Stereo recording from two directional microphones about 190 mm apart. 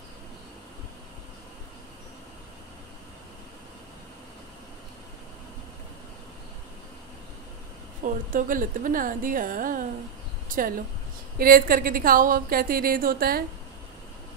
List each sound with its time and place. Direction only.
8.0 s a woman's voice: 45° right (ahead or behind)